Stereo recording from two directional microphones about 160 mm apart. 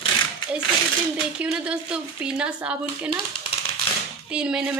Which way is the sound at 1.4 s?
5° right (ahead or behind).